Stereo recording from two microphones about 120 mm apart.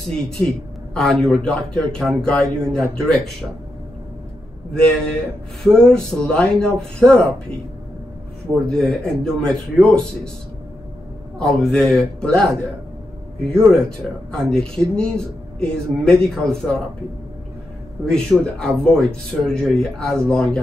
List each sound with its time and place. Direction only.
0.1 s speech: 5° left (ahead or behind)
4.7 s speech: 5° left (ahead or behind)
8.6 s speech: 5° left (ahead or behind)
11.3 s speech: 5° left (ahead or behind)
13.7 s speech: 5° left (ahead or behind)
18.0 s speech: 5° left (ahead or behind)